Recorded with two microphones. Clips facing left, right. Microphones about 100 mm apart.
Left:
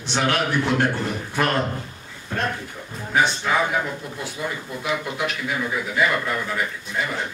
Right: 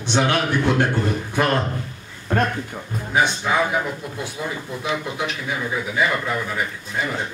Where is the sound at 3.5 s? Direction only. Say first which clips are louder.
Right 1 dB; 15° right (ahead or behind).